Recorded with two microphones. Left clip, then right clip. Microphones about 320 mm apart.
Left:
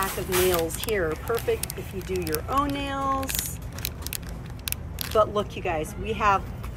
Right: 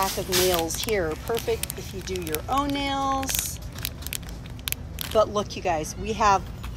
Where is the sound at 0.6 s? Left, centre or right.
Centre.